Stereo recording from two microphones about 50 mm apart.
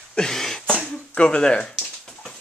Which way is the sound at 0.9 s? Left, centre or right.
Left.